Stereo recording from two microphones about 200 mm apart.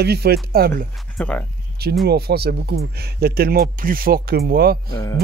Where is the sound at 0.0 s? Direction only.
55° right (ahead or behind).